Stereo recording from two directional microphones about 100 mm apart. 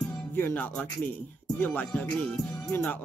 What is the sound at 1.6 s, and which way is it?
Music, 15° left (ahead or behind).